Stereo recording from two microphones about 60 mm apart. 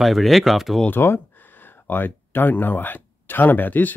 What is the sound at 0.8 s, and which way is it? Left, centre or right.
Speech, left.